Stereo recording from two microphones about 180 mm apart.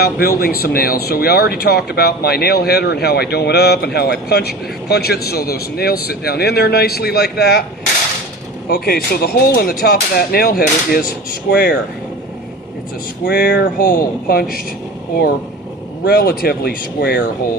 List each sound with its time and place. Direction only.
0.0 s speech: 55° left (ahead or behind)
8.6 s speech: 60° left (ahead or behind)
13.2 s speech: 65° left (ahead or behind)
16.1 s speech: 60° left (ahead or behind)